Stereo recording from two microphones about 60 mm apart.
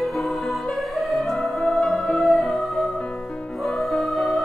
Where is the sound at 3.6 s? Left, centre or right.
Centre.